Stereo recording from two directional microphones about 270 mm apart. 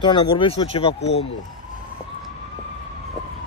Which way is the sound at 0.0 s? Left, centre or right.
Centre.